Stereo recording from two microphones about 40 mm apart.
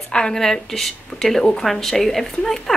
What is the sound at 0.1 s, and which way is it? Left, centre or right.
A woman's voice, centre.